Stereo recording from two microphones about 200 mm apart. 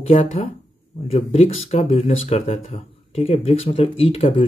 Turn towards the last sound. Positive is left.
turn(degrees=30)  # may be behind; listen again after turning